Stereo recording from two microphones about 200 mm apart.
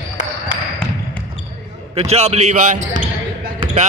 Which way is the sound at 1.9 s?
30° right (ahead or behind).